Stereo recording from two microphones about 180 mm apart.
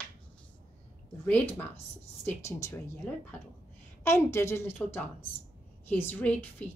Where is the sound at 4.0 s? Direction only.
15° left (ahead or behind).